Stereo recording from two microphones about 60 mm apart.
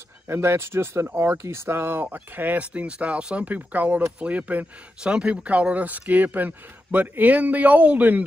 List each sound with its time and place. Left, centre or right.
0.3 s speech: right